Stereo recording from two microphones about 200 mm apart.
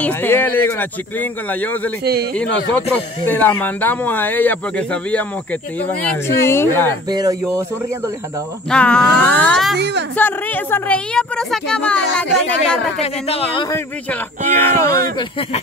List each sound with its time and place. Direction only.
0.0 s speech: 10° left (ahead or behind)
7.1 s speech: 20° right (ahead or behind)
8.6 s a woman's voice: 5° left (ahead or behind)
9.8 s a woman's voice: 55° right (ahead or behind)
10.1 s a woman's voice: 10° left (ahead or behind)
13.0 s speech: 30° left (ahead or behind)
14.5 s speech: 10° left (ahead or behind)
15.1 s speech: 25° left (ahead or behind)